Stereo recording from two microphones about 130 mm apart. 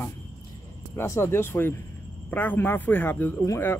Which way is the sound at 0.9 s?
20° left (ahead or behind).